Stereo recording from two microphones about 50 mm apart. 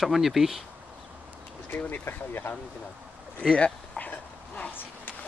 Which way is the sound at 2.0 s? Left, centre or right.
Left.